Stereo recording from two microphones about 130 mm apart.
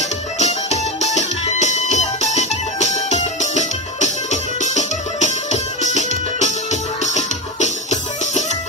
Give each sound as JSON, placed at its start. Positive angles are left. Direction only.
{"t": 0.4, "sound": "music", "side_deg": 60}